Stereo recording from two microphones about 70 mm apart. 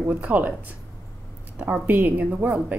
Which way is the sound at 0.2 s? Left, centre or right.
Right.